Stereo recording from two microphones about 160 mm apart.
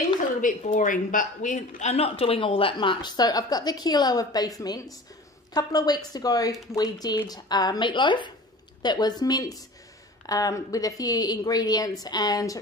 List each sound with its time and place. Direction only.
0.4 s speech: 55° left (ahead or behind); by 12.5 s 20° left (ahead or behind)